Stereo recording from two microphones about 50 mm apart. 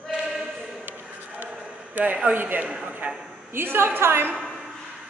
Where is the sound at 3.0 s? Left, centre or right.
Right.